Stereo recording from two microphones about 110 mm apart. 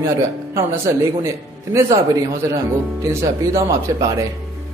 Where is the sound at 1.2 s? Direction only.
30° right (ahead or behind).